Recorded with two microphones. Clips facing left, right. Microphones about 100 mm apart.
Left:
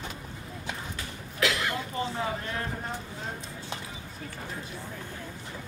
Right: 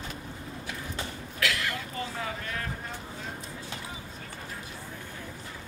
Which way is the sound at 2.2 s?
30° left (ahead or behind).